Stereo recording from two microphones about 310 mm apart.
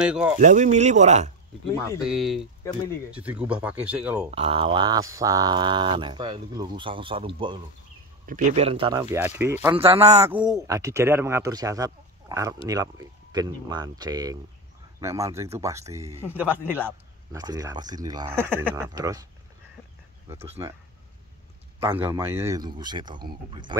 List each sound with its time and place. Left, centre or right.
0.0 s speech: centre
0.4 s speech: right
2.0 s speech: centre
4.4 s speech: centre
9.8 s speech: centre
21.7 s speech: centre